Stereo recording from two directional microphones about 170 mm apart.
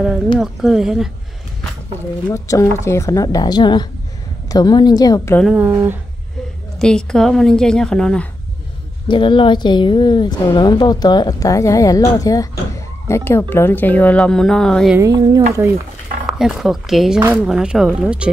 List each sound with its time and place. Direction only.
0.4 s a woman's voice: centre (ahead or behind)
2.2 s a woman's voice: 20° left (ahead or behind)
5.4 s speech: 5° right (ahead or behind)
6.8 s a woman's voice: 5° left (ahead or behind)
9.1 s a woman's voice: 30° left (ahead or behind); by 15.0 s 5° left (ahead or behind)
15.0 s speech: 20° right (ahead or behind)
16.3 s a woman's voice: centre (ahead or behind)